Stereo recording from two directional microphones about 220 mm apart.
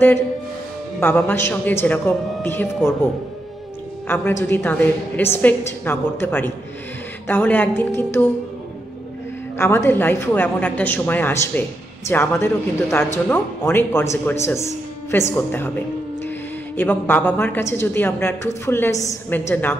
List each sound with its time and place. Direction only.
0.9 s speech: 10° left (ahead or behind)
4.1 s speech: 10° left (ahead or behind)
9.6 s a woman's voice: 10° left (ahead or behind)